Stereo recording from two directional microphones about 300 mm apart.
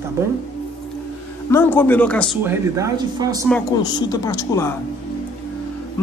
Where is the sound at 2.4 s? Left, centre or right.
Centre.